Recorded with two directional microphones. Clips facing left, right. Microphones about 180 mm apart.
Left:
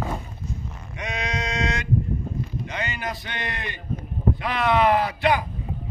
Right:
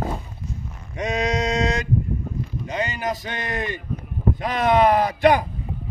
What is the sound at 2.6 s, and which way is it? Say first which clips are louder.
A man's voice: right 8 dB; 40° right (ahead or behind).